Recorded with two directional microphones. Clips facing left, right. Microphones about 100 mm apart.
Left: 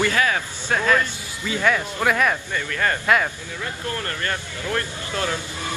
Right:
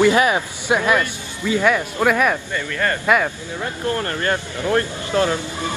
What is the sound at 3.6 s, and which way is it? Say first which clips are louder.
Speech: right 6 dB; 35° right (ahead or behind).